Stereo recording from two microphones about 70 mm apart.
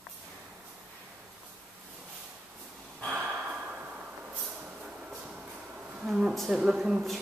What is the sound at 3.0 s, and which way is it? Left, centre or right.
Gasp, centre.